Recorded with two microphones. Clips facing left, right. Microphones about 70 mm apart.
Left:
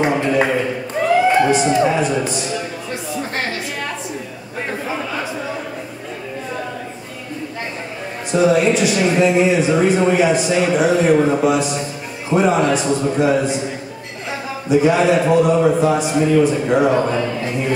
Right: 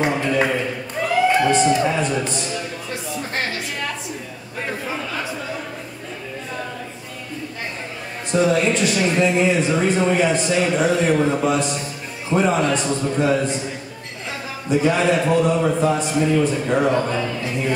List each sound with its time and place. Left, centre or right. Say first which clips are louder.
0.0 s speech: left 3 dB; centre
8.3 s speech: left 3 dB; centre
14.7 s speech: left 4 dB; centre